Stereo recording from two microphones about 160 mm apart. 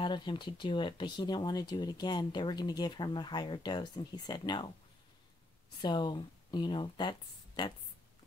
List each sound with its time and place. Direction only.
0.0 s speech: 30° left (ahead or behind)
5.8 s speech: 30° left (ahead or behind)